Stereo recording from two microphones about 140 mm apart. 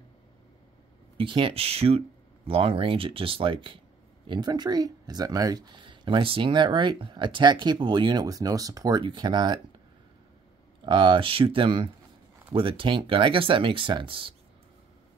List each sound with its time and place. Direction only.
1.1 s speech: 40° right (ahead or behind)
10.8 s speech: 35° right (ahead or behind)